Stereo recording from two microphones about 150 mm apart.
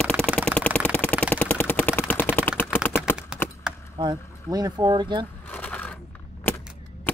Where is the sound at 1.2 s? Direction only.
10° left (ahead or behind).